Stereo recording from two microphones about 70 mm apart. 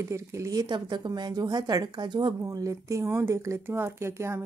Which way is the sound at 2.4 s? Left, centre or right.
Right.